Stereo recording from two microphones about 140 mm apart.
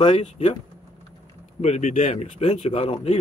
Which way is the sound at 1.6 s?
55° left (ahead or behind).